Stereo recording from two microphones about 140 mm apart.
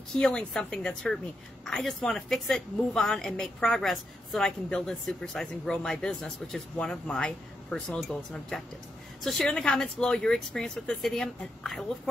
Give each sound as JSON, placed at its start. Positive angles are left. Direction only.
{"t": 0.1, "sound": "a woman's voice", "side_deg": 5}